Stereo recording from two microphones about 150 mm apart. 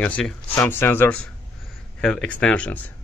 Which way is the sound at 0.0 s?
10° left (ahead or behind).